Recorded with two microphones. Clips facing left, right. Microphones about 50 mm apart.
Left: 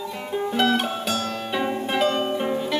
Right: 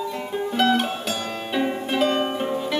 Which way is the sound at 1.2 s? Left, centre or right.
Centre.